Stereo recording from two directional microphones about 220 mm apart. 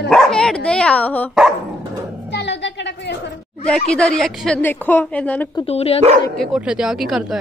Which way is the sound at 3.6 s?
5° left (ahead or behind).